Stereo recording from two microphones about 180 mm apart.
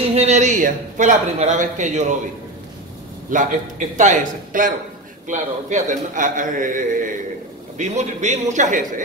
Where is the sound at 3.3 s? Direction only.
45° right (ahead or behind).